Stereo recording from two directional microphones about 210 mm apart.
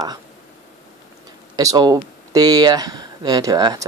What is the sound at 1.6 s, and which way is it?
Speech, 15° right (ahead or behind).